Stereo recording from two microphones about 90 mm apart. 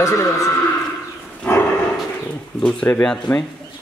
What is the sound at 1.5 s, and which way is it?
Dog, 20° left (ahead or behind).